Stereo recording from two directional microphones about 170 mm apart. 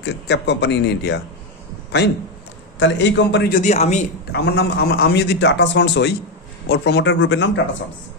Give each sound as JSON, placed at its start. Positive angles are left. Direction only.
{"t": 0.0, "sound": "speech", "side_deg": 90}
{"t": 2.8, "sound": "speech", "side_deg": 90}
{"t": 3.5, "sound": "a man's voice", "side_deg": 40}
{"t": 4.3, "sound": "a man's voice", "side_deg": 75}